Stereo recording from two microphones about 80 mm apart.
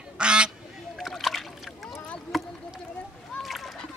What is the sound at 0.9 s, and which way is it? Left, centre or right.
Splash, centre.